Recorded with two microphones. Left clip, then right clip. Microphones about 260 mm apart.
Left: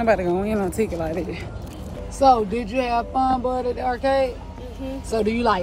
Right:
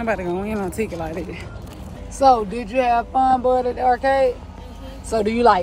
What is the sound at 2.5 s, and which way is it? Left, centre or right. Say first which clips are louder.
Speech: even; centre.